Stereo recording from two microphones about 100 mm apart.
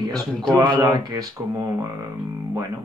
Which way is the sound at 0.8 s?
40° right (ahead or behind).